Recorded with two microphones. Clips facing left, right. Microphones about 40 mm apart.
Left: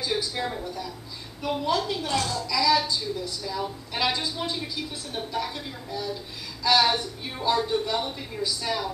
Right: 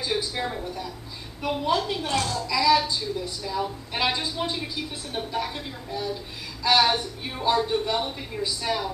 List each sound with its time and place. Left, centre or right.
0.0 s speech: centre